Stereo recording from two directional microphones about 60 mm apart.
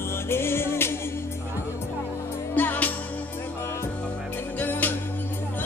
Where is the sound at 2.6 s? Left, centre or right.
Left.